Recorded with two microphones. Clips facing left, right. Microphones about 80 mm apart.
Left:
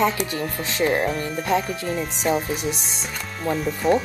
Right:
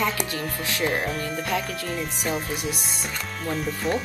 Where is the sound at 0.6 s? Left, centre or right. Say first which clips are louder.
Left 4 dB; left.